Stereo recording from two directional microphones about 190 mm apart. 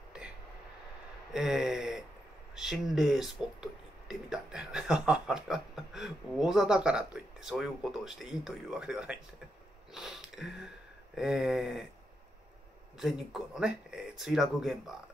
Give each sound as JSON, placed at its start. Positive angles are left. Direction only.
{"t": 1.3, "sound": "gasp", "side_deg": 0}
{"t": 2.5, "sound": "speech", "side_deg": 0}
{"t": 9.9, "sound": "sniff", "side_deg": 0}
{"t": 11.1, "sound": "speech", "side_deg": 0}
{"t": 13.0, "sound": "speech", "side_deg": 0}